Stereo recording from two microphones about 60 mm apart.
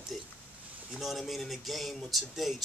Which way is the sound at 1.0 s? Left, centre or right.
Centre.